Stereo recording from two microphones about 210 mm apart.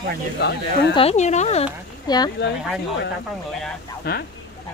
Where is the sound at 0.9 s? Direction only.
30° left (ahead or behind).